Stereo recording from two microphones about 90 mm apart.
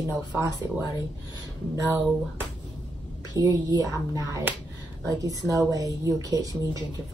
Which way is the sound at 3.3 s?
45° right (ahead or behind).